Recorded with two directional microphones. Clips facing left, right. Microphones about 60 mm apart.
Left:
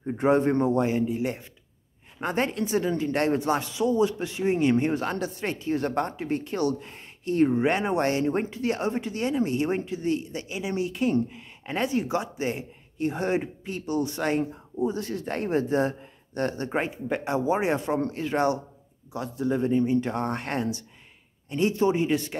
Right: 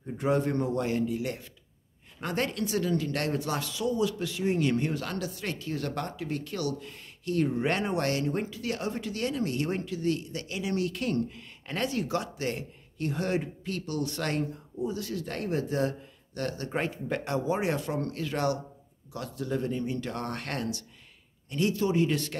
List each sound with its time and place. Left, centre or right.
0.0 s a man's voice: left
14.8 s speech: left; by 22.4 s centre